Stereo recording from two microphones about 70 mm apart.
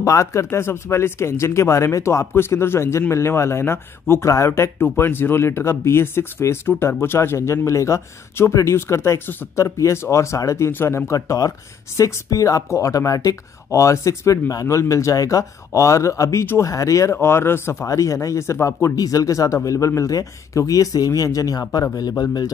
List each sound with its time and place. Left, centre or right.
0.0 s speech: left
10.7 s speech: left
11.1 s speech: left
17.1 s speech: left
17.8 s speech: left
18.9 s speech: left